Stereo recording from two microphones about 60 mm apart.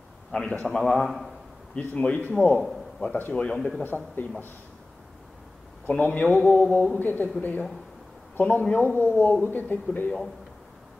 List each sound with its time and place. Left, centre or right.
0.3 s a man's voice: centre
2.0 s speech: left
3.3 s speech: centre
3.8 s speech: left
5.9 s speech: left